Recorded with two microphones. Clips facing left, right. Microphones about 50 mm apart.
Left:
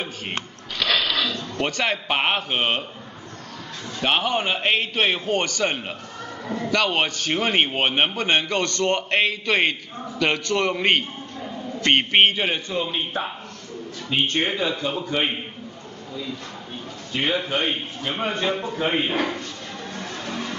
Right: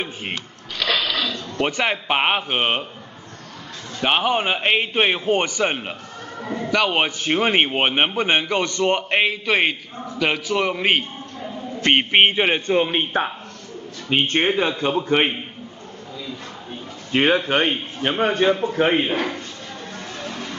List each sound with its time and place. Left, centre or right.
0.8 s a sound: centre
1.6 s a man's voice: centre
4.0 s a man's voice: centre
12.6 s a man's voice: right
17.1 s a man's voice: right
18.5 s a man's voice: right
19.0 s a man's voice: centre